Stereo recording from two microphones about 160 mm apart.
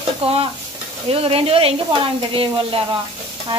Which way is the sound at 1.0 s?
35° right (ahead or behind).